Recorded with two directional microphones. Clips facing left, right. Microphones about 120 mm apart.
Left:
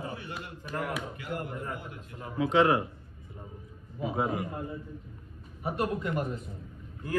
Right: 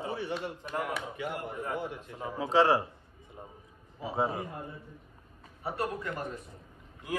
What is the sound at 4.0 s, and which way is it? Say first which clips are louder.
Speech: left 1 dB; 30° right (ahead or behind).